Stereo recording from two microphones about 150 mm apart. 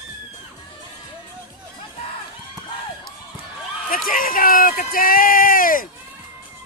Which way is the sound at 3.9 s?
70° left (ahead or behind).